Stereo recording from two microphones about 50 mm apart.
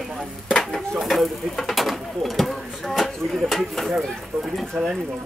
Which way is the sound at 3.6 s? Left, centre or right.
Centre.